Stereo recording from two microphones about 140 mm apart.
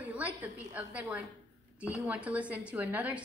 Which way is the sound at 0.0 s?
10° right (ahead or behind).